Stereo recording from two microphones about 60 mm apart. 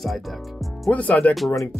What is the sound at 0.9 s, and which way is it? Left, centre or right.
Speech, left.